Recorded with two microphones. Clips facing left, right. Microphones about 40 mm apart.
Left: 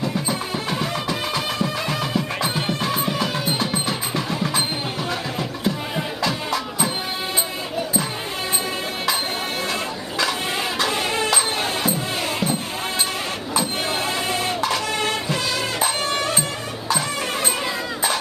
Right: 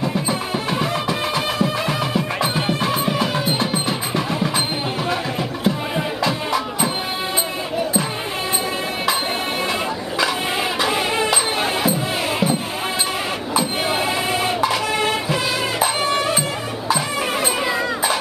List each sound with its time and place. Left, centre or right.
0.0 s music: centre
5.9 s music: centre
10.8 s a sound: centre
13.5 s music: centre